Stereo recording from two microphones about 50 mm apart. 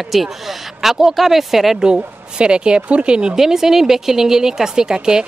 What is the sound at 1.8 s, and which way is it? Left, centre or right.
Speech, centre.